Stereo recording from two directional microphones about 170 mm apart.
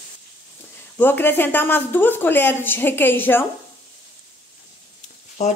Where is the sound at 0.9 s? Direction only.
10° left (ahead or behind).